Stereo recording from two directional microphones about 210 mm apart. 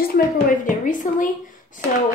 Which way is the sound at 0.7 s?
40° left (ahead or behind).